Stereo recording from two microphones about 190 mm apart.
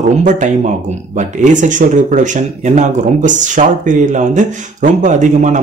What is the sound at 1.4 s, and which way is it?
Speech, 40° right (ahead or behind).